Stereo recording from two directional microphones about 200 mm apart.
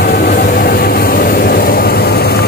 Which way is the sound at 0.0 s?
45° left (ahead or behind).